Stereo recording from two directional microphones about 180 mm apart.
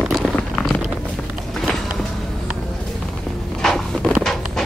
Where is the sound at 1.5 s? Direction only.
Centre (ahead or behind).